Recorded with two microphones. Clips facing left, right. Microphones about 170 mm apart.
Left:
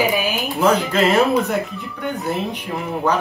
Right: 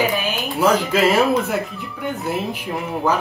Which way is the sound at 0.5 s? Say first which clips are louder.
Right 1 dB; centre (ahead or behind).